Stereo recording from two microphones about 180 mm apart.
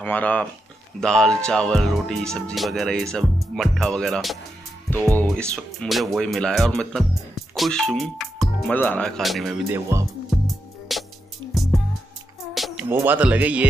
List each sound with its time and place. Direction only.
0.0 s speech: 10° left (ahead or behind)
9.7 s speech: 15° right (ahead or behind)
10.4 s music: centre (ahead or behind)
12.9 s speech: 10° right (ahead or behind)